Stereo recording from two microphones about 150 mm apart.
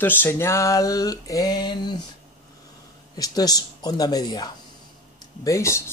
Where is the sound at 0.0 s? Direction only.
15° left (ahead or behind); by 2.0 s 30° left (ahead or behind).